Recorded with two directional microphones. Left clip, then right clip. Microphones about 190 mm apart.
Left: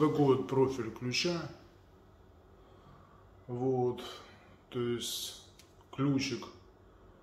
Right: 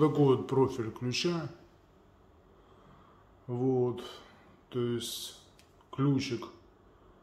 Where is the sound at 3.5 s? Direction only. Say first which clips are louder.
Right 2 dB; 40° right (ahead or behind).